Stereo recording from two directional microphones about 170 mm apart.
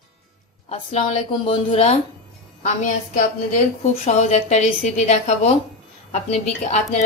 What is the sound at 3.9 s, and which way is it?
Speech, 40° left (ahead or behind).